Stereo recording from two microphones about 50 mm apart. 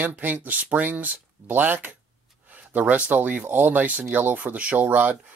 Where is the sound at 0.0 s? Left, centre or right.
Right.